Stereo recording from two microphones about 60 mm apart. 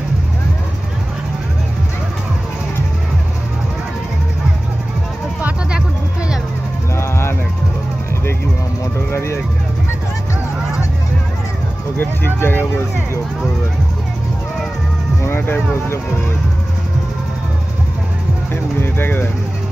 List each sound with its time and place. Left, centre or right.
7.0 s music: left
12.4 s vehicle: left
15.2 s music: left
18.5 s music: left